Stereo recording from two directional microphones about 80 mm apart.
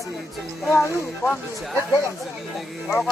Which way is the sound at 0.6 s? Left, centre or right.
Left.